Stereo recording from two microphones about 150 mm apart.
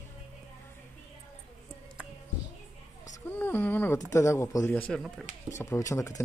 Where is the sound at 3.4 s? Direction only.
15° left (ahead or behind).